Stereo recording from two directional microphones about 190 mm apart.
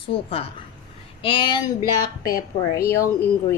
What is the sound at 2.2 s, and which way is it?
Speech, 50° left (ahead or behind).